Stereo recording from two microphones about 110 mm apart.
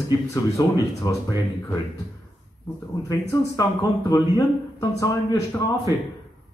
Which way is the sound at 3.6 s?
35° left (ahead or behind).